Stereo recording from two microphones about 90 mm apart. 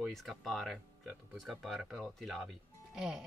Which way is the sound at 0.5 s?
Centre (ahead or behind).